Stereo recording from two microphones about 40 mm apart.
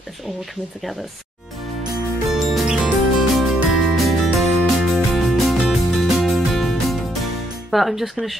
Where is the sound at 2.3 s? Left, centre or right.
Centre.